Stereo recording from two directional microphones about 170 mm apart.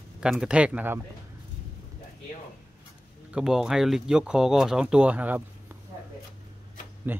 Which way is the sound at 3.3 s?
5° right (ahead or behind).